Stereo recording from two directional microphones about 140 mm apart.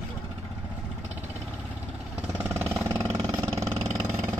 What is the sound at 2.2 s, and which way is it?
Vehicle, 15° right (ahead or behind).